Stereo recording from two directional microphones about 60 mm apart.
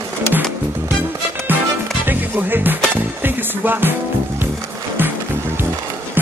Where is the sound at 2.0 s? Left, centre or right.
Right.